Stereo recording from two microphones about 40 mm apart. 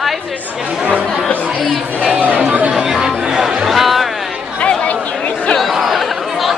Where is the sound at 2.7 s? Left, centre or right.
Centre.